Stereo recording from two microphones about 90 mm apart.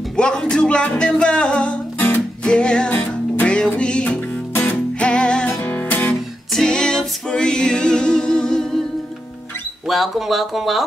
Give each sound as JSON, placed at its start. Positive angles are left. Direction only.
{"t": 0.1, "sound": "music", "side_deg": 10}
{"t": 6.5, "sound": "music", "side_deg": 5}
{"t": 9.8, "sound": "speech", "side_deg": 0}